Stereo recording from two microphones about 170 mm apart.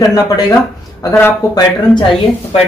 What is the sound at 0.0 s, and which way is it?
Speech, 20° left (ahead or behind).